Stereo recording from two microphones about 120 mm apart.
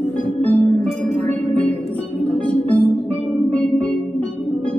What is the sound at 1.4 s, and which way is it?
Music, 55° right (ahead or behind).